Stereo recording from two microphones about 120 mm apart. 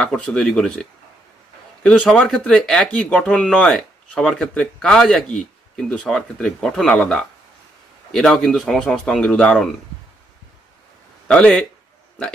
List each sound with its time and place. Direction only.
0.0 s speech: 5° left (ahead or behind)
1.8 s speech: 5° left (ahead or behind)
11.2 s speech: 5° left (ahead or behind)